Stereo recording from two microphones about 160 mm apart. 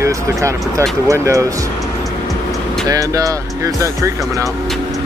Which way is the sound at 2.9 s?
20° right (ahead or behind).